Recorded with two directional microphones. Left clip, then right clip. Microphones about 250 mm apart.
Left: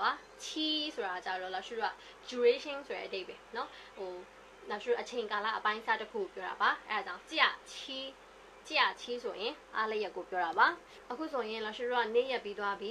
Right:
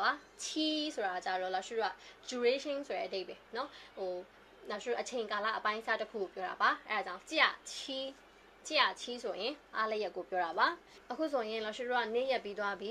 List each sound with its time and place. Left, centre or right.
0.0 s a woman's voice: right
4.6 s a woman's voice: right